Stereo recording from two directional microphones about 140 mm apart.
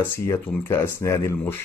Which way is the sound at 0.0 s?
15° left (ahead or behind).